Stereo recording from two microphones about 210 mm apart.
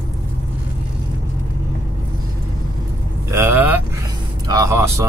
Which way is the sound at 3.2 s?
15° right (ahead or behind).